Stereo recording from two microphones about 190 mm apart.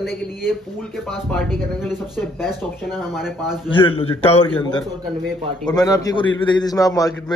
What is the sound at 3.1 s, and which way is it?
Speech, centre (ahead or behind).